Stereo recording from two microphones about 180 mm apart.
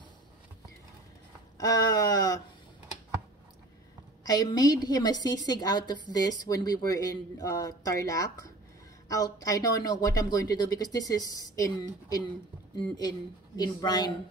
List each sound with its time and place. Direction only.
1.6 s speech: 20° left (ahead or behind)
4.2 s a woman's voice: 20° left (ahead or behind)